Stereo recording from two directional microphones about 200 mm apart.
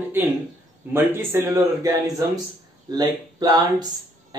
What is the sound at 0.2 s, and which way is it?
Speech, 10° right (ahead or behind).